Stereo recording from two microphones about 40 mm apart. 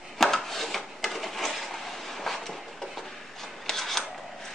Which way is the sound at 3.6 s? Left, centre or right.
Centre.